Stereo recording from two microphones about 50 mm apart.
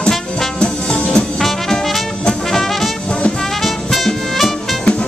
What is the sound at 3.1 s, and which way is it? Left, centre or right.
Brass instrument, left.